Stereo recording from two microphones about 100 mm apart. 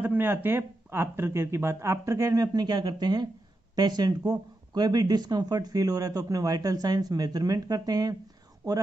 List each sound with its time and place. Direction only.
0.0 s speech: 20° right (ahead or behind); by 8.2 s 40° right (ahead or behind)